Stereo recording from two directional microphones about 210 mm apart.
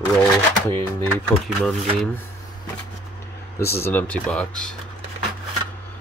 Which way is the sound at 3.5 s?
10° left (ahead or behind).